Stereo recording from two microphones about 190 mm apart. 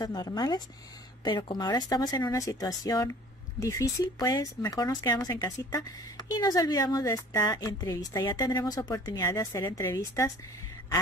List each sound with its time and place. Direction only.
0.0 s speech: 20° left (ahead or behind)